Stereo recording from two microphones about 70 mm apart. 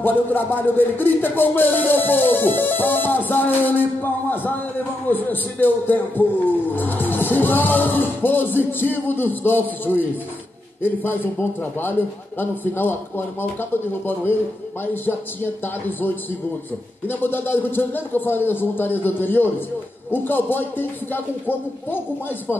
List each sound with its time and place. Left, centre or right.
0.0 s music: left
12.4 s music: left